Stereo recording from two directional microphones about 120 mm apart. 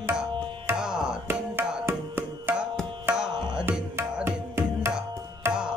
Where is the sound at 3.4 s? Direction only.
40° right (ahead or behind).